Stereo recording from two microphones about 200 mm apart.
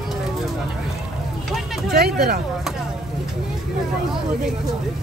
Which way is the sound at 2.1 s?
50° right (ahead or behind).